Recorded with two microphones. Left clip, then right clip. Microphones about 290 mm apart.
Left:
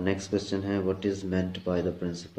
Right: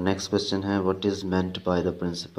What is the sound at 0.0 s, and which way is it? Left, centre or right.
Speech, centre.